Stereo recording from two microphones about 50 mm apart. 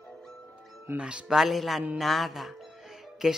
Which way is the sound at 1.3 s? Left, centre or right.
Centre.